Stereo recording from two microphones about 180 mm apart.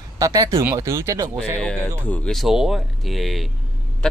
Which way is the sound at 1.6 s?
5° left (ahead or behind).